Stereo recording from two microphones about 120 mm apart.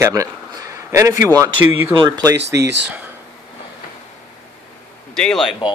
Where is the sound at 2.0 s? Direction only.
35° right (ahead or behind).